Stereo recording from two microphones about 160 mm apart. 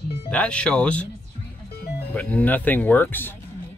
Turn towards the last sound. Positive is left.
turn(degrees=10)  # may be behind; listen again after turning